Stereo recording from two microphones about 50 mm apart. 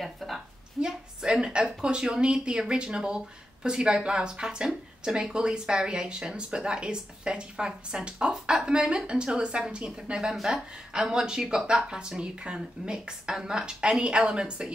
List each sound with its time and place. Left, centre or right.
0.0 s a woman's voice: centre
0.7 s speech: centre